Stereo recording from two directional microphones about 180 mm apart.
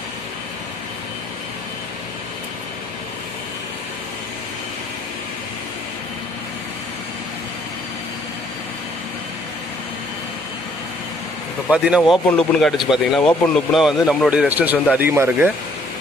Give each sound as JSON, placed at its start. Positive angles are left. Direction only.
{"t": 11.7, "sound": "speech", "side_deg": -5}